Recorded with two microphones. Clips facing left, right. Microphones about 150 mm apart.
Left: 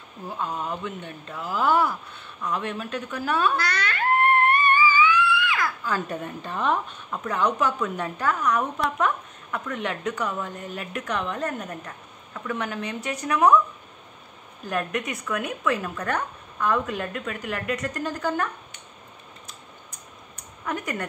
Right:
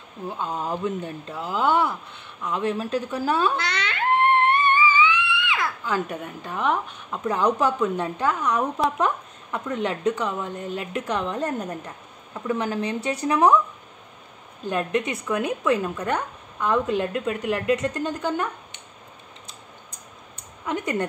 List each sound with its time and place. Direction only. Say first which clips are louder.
0.4 s a woman's voice: right 3 dB; 30° right (ahead or behind)
2.5 s a sound: right 5 dB; 30° right (ahead or behind)
5.9 s a woman's voice: right 2 dB; 15° right (ahead or behind)
6.1 s speech: even; 5° right (ahead or behind)
7.2 s a woman's voice: right 3 dB; 30° right (ahead or behind)
14.7 s a woman's voice: right 3 dB; 25° right (ahead or behind)
20.6 s a woman's voice: right 4 dB; 25° right (ahead or behind)